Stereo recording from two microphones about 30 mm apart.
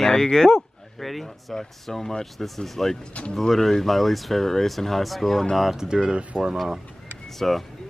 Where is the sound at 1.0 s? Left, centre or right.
Centre.